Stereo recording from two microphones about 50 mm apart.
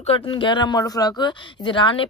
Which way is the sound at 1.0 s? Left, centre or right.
Left.